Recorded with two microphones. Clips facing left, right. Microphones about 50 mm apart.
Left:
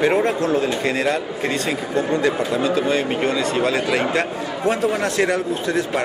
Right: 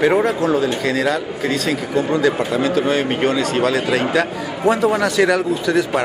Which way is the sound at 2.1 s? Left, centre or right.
Right.